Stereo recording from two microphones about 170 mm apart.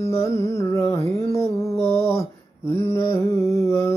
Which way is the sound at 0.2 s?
15° left (ahead or behind).